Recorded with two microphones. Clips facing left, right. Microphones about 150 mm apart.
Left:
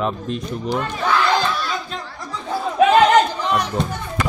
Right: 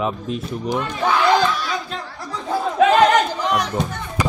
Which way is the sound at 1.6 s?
10° right (ahead or behind).